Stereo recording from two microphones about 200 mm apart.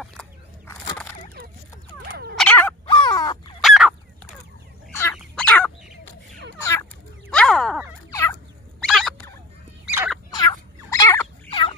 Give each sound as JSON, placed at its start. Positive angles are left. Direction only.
{"t": 2.0, "sound": "dog", "side_deg": -55}
{"t": 2.3, "sound": "dog", "side_deg": 5}
{"t": 2.9, "sound": "crow", "side_deg": 20}
{"t": 3.6, "sound": "fowl", "side_deg": 0}
{"t": 6.6, "sound": "chicken", "side_deg": 15}
{"t": 7.2, "sound": "a sound", "side_deg": 5}
{"t": 8.1, "sound": "fowl", "side_deg": 15}
{"t": 8.8, "sound": "turkey", "side_deg": 0}
{"t": 10.3, "sound": "turkey", "side_deg": 20}